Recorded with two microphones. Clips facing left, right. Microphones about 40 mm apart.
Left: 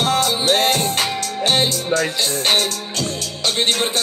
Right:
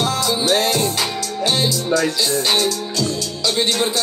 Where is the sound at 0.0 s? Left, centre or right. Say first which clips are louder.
Left 1 dB; left.